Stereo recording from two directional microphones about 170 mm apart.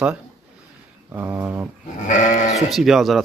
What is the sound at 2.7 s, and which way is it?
Speech, centre (ahead or behind).